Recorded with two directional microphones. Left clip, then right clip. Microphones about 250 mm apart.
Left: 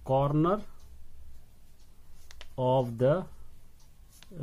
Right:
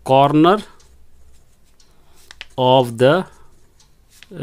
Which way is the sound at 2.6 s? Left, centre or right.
Right.